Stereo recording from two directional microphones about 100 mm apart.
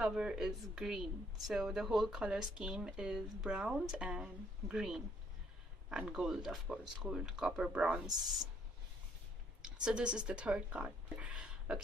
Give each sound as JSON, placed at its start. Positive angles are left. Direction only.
{"t": 0.0, "sound": "speech", "side_deg": -5}
{"t": 9.6, "sound": "speech", "side_deg": -10}